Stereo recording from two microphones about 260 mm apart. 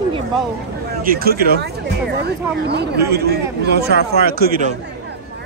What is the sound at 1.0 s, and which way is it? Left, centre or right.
Speech, right.